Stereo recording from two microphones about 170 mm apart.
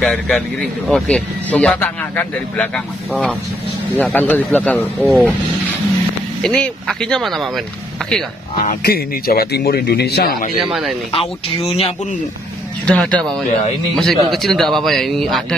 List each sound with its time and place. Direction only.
0.0 s a man's voice: 5° left (ahead or behind)
6.4 s speech: 5° left (ahead or behind)
8.6 s speech: 60° left (ahead or behind)
10.6 s speech: centre (ahead or behind)
11.1 s speech: 35° left (ahead or behind)
12.8 s speech: 5° left (ahead or behind)